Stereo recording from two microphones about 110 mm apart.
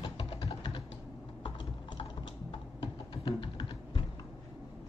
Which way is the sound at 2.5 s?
50° left (ahead or behind).